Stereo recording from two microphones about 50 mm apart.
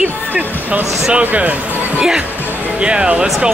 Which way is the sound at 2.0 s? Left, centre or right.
Centre.